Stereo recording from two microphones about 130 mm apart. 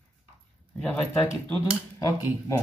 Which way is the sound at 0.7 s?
10° left (ahead or behind).